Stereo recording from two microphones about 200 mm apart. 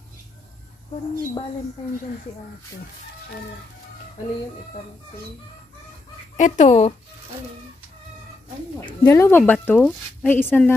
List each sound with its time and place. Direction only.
6.3 s speech: 40° left (ahead or behind)
8.8 s a woman's voice: 15° left (ahead or behind)